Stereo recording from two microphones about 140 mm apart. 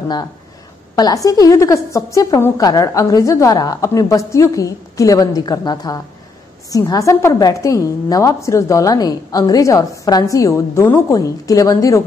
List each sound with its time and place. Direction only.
0.9 s a woman's voice: 25° left (ahead or behind)